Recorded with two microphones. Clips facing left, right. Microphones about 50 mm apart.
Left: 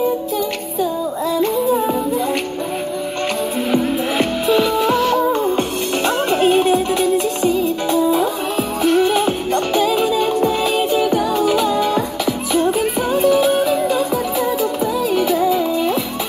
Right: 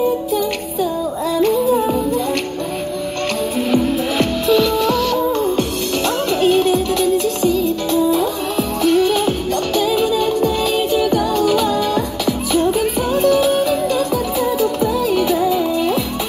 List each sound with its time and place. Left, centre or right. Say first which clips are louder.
1.4 s music: right 3 dB; centre
3.7 s music: right 1 dB; centre